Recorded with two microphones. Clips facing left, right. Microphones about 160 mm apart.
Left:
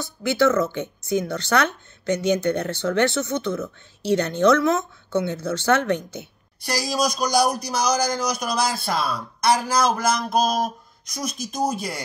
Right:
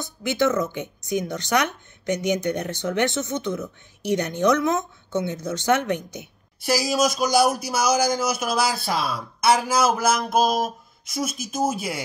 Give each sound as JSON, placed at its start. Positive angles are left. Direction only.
{"t": 0.0, "sound": "speech", "side_deg": -20}
{"t": 6.6, "sound": "speech", "side_deg": -5}